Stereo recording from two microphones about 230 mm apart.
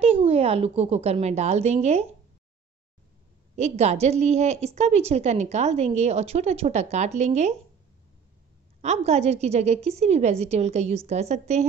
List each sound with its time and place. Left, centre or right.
0.0 s a woman's voice: right
3.5 s a woman's voice: right
8.8 s a woman's voice: right